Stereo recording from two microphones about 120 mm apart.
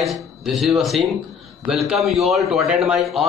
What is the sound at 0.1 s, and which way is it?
A man's voice, centre (ahead or behind).